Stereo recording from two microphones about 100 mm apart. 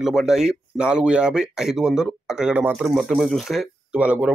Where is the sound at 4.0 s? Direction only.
10° right (ahead or behind).